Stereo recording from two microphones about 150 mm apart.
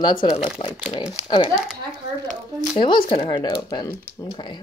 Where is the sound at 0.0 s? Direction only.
30° left (ahead or behind).